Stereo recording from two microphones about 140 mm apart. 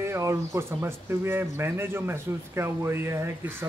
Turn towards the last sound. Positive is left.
turn(degrees=-15)  # may be behind; listen again after turning